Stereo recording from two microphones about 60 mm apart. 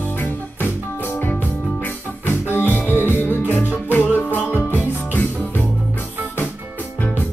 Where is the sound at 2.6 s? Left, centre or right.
Left.